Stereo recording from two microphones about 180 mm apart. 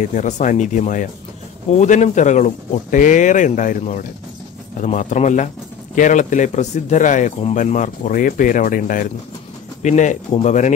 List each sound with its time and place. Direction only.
0.0 s speech: 45° left (ahead or behind)